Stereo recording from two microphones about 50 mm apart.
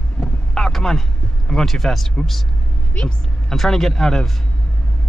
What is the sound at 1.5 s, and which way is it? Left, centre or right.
Speech, centre.